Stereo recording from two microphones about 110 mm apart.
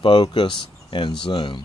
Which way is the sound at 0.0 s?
45° left (ahead or behind).